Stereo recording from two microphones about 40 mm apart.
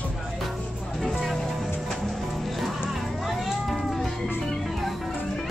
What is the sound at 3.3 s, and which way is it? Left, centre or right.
Music, centre.